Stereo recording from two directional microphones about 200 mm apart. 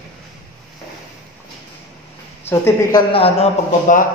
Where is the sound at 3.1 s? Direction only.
30° left (ahead or behind).